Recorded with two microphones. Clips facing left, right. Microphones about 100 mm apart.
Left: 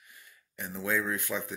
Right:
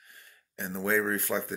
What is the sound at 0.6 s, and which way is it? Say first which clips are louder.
Speech: right 3 dB; 30° right (ahead or behind).